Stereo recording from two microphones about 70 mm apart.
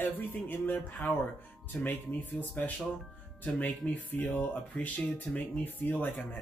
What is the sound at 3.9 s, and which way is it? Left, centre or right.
Speech, left.